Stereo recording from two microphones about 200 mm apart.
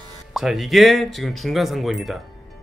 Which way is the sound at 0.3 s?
Centre (ahead or behind).